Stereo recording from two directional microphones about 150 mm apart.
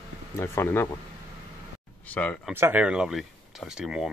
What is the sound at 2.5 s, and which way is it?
Speech, 15° right (ahead or behind).